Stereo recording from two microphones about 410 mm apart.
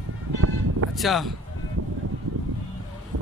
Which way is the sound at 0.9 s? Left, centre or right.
Centre.